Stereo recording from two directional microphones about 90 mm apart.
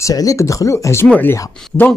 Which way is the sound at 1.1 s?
20° left (ahead or behind).